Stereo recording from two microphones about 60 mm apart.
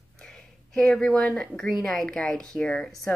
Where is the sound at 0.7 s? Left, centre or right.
Centre.